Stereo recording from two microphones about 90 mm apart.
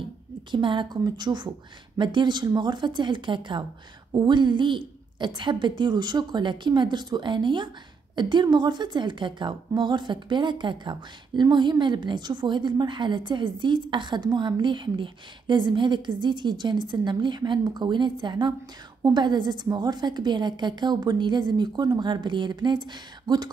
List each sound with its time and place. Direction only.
0.5 s a woman's voice: 60° right (ahead or behind)